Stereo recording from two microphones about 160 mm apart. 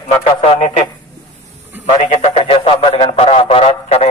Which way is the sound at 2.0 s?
40° left (ahead or behind).